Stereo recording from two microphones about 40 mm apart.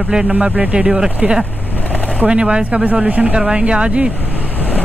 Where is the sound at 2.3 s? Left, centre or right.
Right.